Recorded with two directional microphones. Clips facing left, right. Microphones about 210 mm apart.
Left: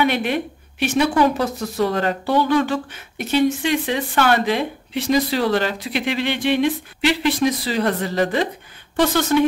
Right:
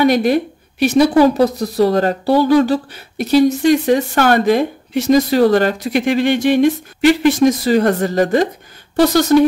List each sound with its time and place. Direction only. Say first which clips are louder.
0.0 s a woman's voice: right 7 dB; 40° right (ahead or behind)